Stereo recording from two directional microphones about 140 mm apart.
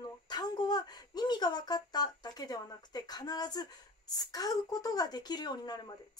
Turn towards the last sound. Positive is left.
turn(degrees=30)  # may be behind; listen again after turning